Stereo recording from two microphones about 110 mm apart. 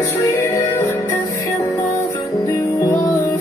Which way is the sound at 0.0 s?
25° left (ahead or behind).